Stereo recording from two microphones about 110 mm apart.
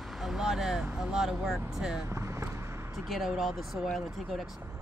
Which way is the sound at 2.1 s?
25° right (ahead or behind).